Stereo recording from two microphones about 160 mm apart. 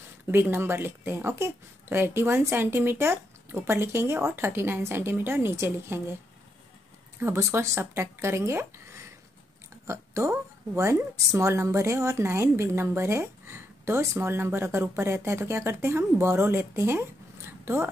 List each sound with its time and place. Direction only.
0.3 s a woman's voice: 15° right (ahead or behind)
7.2 s a woman's voice: 15° right (ahead or behind)
17.5 s a sound: 15° right (ahead or behind)